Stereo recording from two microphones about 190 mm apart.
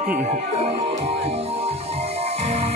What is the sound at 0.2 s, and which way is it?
Music, 35° right (ahead or behind).